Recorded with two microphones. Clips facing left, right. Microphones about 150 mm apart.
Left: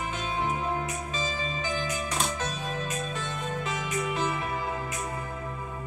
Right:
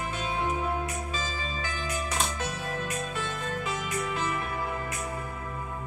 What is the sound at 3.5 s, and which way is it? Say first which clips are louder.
Music: even; 15° left (ahead or behind).